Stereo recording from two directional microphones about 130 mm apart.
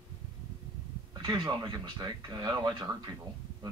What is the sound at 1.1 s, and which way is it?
Speech, 35° right (ahead or behind).